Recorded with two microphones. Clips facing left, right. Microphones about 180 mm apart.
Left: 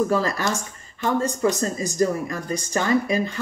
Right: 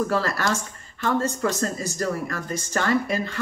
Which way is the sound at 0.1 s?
15° left (ahead or behind).